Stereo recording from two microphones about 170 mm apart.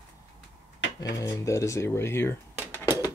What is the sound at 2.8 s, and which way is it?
Pigeon, 10° right (ahead or behind).